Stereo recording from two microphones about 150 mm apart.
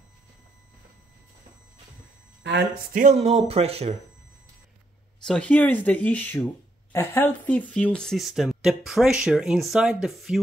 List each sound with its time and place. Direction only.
2.7 s speech: 75° right (ahead or behind)
3.1 s speech: 45° right (ahead or behind)
5.2 s speech: 5° left (ahead or behind)